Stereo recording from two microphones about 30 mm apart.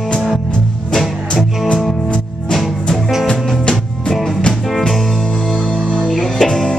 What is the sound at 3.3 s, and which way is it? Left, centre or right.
Music, left.